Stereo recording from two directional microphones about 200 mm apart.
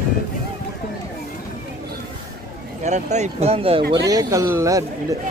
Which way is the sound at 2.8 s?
35° right (ahead or behind).